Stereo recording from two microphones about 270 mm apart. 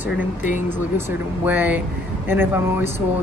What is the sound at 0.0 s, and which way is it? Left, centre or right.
Speech, left.